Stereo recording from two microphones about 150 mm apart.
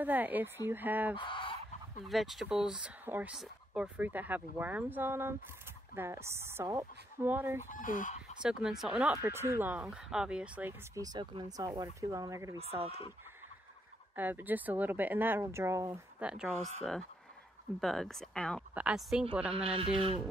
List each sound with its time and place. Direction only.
0.0 s speech: 10° right (ahead or behind)
1.1 s goose: 35° left (ahead or behind)
2.0 s speech: centre (ahead or behind)
7.7 s chicken: 60° left (ahead or behind)
8.4 s speech: 5° right (ahead or behind)
9.1 s speech: 15° right (ahead or behind)
11.0 s speech: 25° right (ahead or behind)
12.5 s speech: 40° right (ahead or behind)
14.1 s speech: 10° right (ahead or behind)
16.2 s speech: 5° right (ahead or behind)
16.5 s speech: 45° right (ahead or behind)
17.7 s speech: centre (ahead or behind)
19.5 s speech: 40° right (ahead or behind)